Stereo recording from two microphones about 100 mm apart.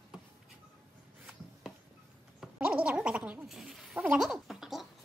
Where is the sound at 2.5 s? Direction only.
15° right (ahead or behind).